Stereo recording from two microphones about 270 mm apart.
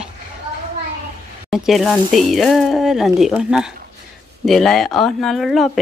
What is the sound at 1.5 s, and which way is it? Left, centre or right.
Speech, centre.